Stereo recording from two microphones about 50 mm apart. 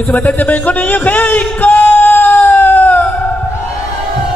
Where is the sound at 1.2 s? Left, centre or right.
Left.